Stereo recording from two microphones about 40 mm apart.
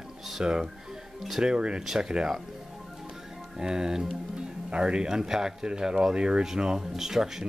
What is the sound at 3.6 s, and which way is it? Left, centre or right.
Speech, centre.